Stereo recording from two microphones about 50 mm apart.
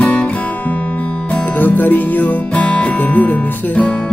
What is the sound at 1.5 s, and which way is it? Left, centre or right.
Music, left.